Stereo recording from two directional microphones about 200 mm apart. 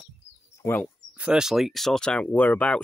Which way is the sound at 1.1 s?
5° right (ahead or behind).